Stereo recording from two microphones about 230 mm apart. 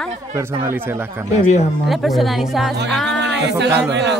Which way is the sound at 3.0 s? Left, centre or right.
Right.